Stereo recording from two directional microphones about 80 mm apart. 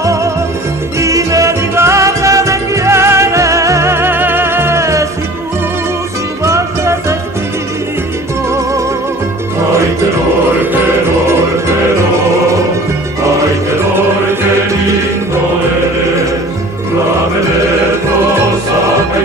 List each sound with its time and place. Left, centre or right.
0.9 s music: right
6.4 s music: right